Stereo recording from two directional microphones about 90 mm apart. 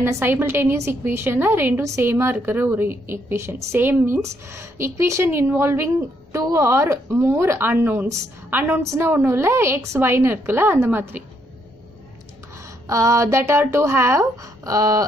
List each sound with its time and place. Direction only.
0.0 s speech: 25° right (ahead or behind)
12.8 s speech: 35° right (ahead or behind)